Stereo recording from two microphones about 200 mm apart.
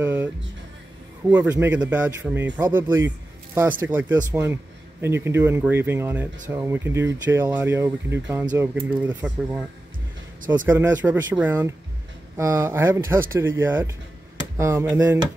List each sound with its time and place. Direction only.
0.0 s music: 15° right (ahead or behind)
1.3 s speech: 10° right (ahead or behind)
10.7 s speech: 10° right (ahead or behind)